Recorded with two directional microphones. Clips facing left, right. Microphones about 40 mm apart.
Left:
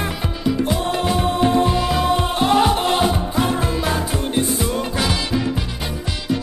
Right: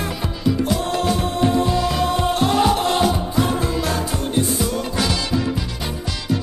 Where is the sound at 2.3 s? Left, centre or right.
Left.